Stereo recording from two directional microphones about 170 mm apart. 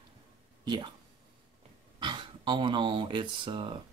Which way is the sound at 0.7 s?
30° right (ahead or behind).